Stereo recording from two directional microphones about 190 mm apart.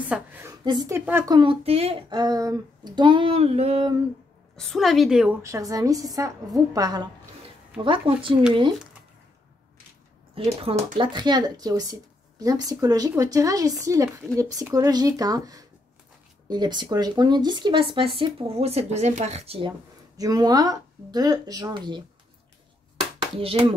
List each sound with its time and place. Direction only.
0.1 s a woman's voice: 5° right (ahead or behind)
0.7 s speech: 20° right (ahead or behind)
4.6 s a woman's voice: centre (ahead or behind)
5.4 s a woman's voice: 15° right (ahead or behind)
10.3 s speech: 30° right (ahead or behind)
20.2 s speech: 20° right (ahead or behind)
23.1 s speech: 30° right (ahead or behind)